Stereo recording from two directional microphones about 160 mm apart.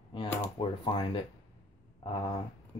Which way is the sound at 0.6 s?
30° left (ahead or behind).